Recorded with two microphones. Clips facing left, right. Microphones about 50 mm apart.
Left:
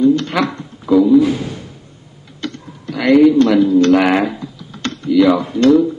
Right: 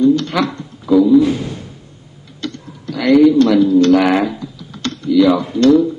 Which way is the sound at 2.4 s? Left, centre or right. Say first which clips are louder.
Even; centre.